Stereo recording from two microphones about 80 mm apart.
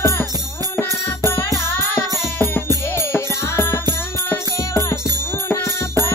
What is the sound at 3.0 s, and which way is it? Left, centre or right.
Music, left.